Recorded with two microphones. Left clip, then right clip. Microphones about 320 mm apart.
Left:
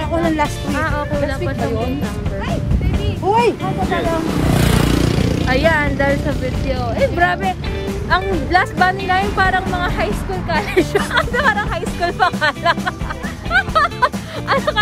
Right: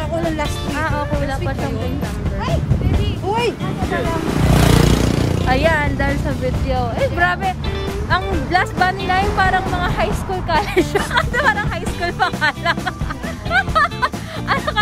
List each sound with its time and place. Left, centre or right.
0.7 s speech: centre
3.3 s speech: centre
4.6 s vehicle: right
5.5 s speech: centre
13.5 s music: centre